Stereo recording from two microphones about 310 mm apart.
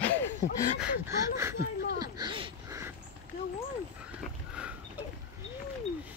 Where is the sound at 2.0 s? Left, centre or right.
Centre.